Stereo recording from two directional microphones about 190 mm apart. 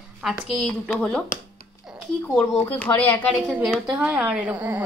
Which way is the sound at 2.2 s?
10° left (ahead or behind).